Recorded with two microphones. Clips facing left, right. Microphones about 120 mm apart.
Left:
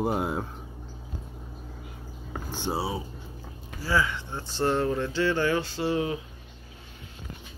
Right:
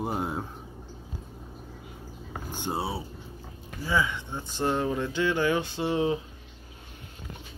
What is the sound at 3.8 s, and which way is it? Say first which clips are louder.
Speech: left 1 dB; 20° right (ahead or behind).